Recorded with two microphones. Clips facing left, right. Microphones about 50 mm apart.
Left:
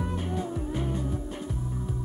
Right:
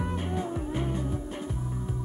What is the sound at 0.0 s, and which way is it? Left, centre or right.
Music, right.